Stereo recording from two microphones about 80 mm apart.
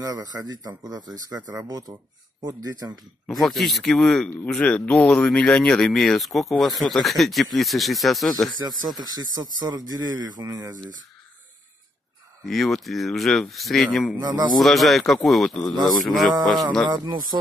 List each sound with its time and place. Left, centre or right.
0.0 s speech: right
3.3 s speech: centre
8.6 s speech: right
12.4 s speech: centre
14.1 s speech: right
14.6 s speech: centre
16.8 s speech: right